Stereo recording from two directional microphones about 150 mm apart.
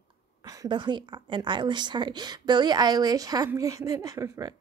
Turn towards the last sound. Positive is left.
turn(degrees=-25)  # may be behind; listen again after turning